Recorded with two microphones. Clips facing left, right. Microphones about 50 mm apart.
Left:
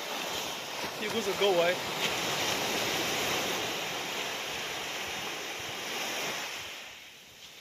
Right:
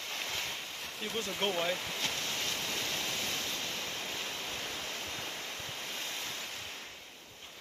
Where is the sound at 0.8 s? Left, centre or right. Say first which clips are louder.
Left 6 dB; left.